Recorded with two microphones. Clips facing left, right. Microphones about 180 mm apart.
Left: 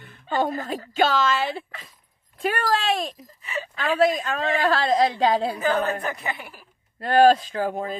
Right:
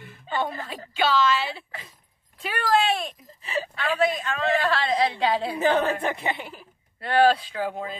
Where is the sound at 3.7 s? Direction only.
40° left (ahead or behind).